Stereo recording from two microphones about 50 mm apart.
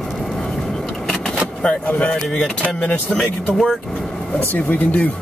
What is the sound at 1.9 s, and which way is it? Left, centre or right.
Speech, left.